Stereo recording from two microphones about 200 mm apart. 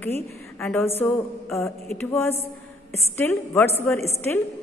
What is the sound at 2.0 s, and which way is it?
Speech, 10° left (ahead or behind).